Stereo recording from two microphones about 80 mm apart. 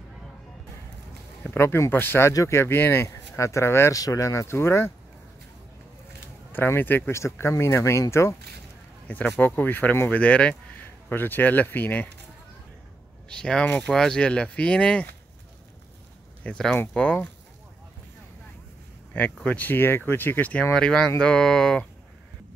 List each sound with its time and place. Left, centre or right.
1.5 s speech: left
3.9 s speech: left
6.5 s speech: left
9.0 s speech: left
13.3 s speech: centre
16.4 s speech: centre
19.4 s speech: centre
20.7 s speech: centre